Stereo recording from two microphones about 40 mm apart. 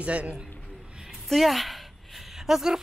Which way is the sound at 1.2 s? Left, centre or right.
Centre.